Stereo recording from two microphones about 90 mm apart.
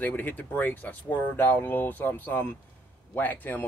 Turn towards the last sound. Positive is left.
turn(degrees=20)  # may be behind; listen again after turning